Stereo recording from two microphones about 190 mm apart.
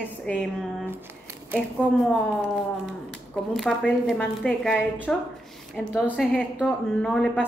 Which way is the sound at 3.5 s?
Centre (ahead or behind).